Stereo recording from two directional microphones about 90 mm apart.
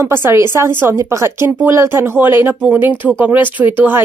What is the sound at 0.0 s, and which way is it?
Speech, 25° right (ahead or behind).